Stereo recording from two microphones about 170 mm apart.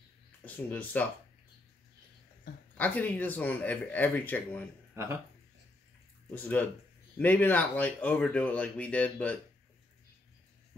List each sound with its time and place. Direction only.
0.7 s speech: 10° left (ahead or behind)
2.8 s speech: 10° left (ahead or behind)
4.9 s speech: 15° right (ahead or behind)
6.3 s speech: 10° left (ahead or behind)